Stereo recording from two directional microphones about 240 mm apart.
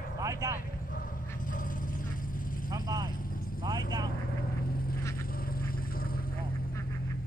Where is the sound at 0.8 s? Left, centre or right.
Left.